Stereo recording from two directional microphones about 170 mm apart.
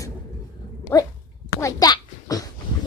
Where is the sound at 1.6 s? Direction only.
20° left (ahead or behind).